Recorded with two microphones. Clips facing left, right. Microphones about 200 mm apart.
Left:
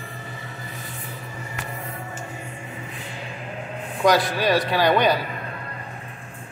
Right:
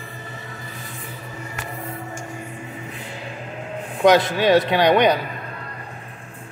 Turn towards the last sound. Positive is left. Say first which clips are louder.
# right 3 dB
turn(degrees=-20)  # may be behind; listen again after turning